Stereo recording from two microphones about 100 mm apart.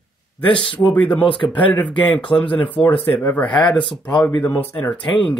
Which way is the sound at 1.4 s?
55° left (ahead or behind).